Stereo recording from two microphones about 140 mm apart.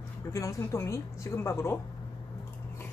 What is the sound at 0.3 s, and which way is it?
Speech, 20° left (ahead or behind).